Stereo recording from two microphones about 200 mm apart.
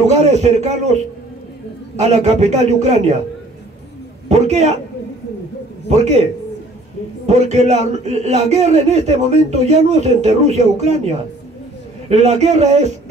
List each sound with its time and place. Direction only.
0.0 s speech: 35° right (ahead or behind)
2.0 s speech: 35° right (ahead or behind)
4.3 s speech: 35° right (ahead or behind)
5.9 s speech: 35° right (ahead or behind)
7.2 s speech: 35° right (ahead or behind)